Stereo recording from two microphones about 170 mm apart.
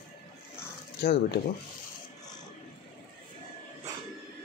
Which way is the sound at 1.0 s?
75° left (ahead or behind).